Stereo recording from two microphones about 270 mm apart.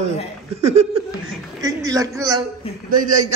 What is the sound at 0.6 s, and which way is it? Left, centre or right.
Laughter, right.